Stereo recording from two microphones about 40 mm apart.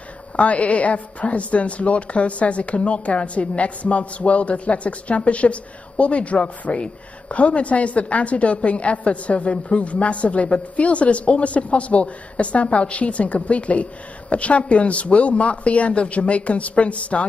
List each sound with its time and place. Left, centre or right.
0.4 s a woman's voice: left